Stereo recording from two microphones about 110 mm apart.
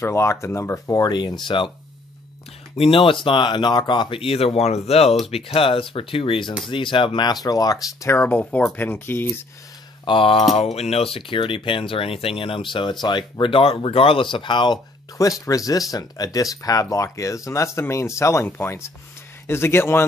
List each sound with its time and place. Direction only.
0.0 s speech: 25° left (ahead or behind)
1.5 s speech: 45° left (ahead or behind)
2.7 s speech: 60° left (ahead or behind)
7.4 s speech: 35° left (ahead or behind)
10.0 s a sound: 50° left (ahead or behind)
10.5 s speech: 70° left (ahead or behind); by 14.8 s 45° left (ahead or behind)
15.1 s speech: 30° left (ahead or behind)